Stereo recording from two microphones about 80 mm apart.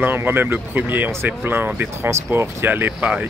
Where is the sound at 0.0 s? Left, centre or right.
Right.